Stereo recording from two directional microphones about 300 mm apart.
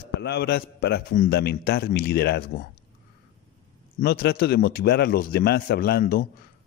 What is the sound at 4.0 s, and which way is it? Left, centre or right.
A man's voice, left.